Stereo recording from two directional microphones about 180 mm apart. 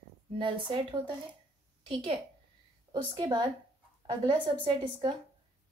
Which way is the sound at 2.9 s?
25° right (ahead or behind).